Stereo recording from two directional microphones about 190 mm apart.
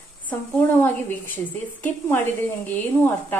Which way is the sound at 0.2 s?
10° left (ahead or behind).